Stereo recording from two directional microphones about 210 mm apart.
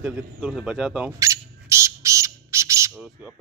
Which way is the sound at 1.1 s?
15° right (ahead or behind).